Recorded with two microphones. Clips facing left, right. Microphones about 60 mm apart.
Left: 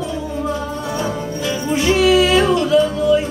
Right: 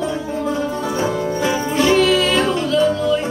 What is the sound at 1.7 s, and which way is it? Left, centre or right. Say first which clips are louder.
Music: left 2 dB; centre.